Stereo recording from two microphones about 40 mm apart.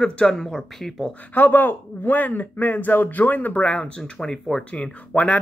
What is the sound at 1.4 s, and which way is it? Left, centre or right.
A man's voice, left.